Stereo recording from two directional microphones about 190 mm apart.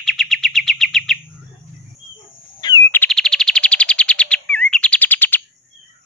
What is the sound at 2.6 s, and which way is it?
Bird, 20° left (ahead or behind).